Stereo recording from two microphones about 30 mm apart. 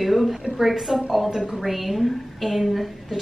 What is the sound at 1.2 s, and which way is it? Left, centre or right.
Speech, centre.